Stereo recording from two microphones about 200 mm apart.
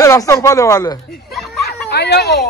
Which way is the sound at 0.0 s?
15° left (ahead or behind).